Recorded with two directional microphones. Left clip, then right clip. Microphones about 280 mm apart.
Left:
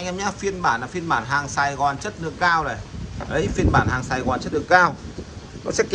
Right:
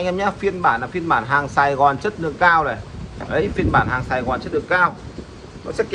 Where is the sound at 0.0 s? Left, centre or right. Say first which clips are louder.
Right 5 dB; centre.